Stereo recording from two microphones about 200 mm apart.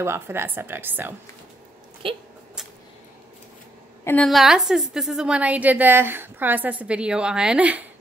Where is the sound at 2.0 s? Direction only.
25° right (ahead or behind).